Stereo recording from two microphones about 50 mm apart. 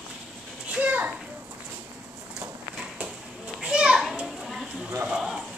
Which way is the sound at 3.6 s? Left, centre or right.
Centre.